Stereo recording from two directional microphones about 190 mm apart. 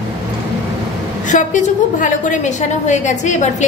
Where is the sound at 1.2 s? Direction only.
40° left (ahead or behind).